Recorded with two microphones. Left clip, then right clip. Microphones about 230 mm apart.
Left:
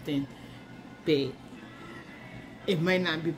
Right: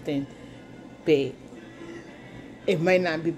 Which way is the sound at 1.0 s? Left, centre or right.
Centre.